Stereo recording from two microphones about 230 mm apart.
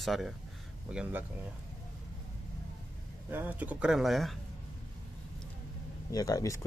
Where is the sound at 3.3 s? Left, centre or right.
Centre.